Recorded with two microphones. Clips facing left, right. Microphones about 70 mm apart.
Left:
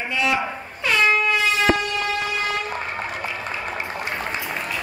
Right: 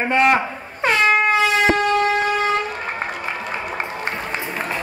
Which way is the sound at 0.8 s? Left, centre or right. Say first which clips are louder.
Right 3 dB; right.